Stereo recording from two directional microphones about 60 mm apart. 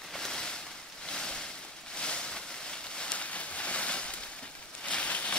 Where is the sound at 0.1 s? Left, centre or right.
Centre.